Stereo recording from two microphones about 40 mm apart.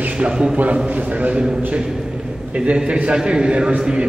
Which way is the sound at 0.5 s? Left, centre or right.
Right.